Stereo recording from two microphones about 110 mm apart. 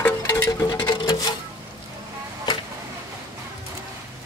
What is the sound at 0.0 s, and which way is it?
Music, 15° left (ahead or behind).